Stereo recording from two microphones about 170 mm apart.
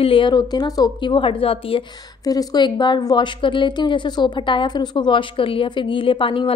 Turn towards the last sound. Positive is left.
turn(degrees=30)  # may be behind; listen again after turning